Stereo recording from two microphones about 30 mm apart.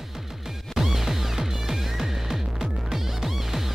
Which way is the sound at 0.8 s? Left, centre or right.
Centre.